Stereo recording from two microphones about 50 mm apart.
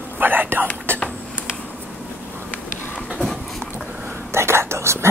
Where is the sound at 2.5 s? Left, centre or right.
Centre.